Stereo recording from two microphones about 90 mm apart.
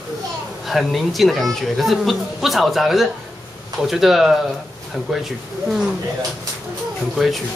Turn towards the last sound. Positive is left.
turn(degrees=0)  # may be behind; listen again after turning